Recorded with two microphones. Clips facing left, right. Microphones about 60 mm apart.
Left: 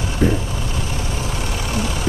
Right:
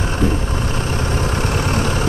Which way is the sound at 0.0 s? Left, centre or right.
Right.